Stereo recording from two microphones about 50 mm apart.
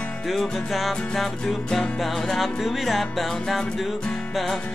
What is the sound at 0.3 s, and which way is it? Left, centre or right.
Music, centre.